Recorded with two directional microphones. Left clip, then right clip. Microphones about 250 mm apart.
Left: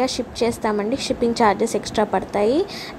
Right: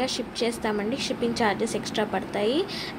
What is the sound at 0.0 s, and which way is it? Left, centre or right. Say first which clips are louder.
A woman's voice: left 6 dB; centre.